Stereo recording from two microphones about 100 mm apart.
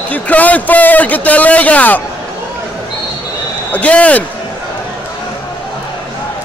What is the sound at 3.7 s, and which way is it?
Speech, 15° left (ahead or behind).